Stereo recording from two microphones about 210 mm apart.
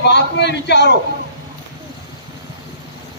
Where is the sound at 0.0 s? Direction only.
55° left (ahead or behind).